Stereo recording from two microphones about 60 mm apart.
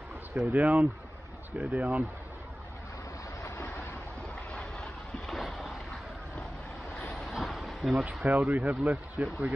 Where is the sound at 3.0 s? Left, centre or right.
Left.